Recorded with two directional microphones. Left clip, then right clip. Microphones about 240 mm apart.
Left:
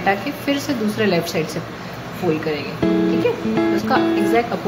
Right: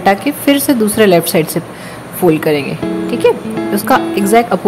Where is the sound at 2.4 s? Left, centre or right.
Right.